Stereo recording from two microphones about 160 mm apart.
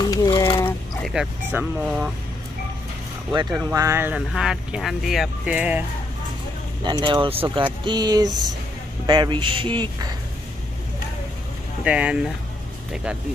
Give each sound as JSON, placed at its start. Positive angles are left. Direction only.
{"t": 0.0, "sound": "mechanisms", "side_deg": 25}
{"t": 1.0, "sound": "music", "side_deg": 0}
{"t": 1.5, "sound": "speech", "side_deg": -5}
{"t": 3.5, "sound": "speech", "side_deg": -15}
{"t": 4.1, "sound": "speech", "side_deg": -5}
{"t": 6.8, "sound": "speech", "side_deg": -25}
{"t": 11.8, "sound": "speech", "side_deg": -5}